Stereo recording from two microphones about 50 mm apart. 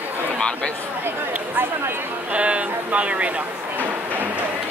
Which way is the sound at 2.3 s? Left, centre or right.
Right.